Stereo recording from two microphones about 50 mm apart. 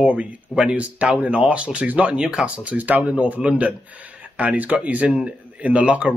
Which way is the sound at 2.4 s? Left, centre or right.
Right.